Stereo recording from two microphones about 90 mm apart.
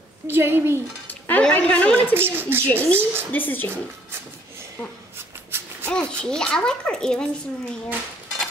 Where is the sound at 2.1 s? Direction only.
25° right (ahead or behind).